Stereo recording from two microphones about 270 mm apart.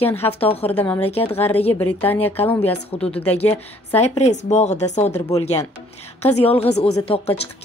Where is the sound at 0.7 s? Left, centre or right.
Centre.